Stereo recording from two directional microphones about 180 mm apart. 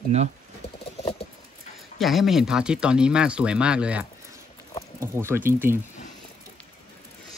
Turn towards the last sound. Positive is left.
turn(degrees=-10)  # may be behind; listen again after turning